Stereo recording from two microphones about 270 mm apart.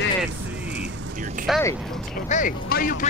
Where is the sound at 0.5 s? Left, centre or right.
Right.